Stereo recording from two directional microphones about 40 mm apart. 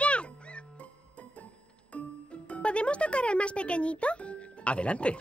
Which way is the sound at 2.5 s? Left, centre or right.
Left.